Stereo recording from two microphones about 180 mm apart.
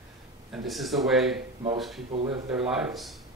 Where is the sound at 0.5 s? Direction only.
Centre (ahead or behind).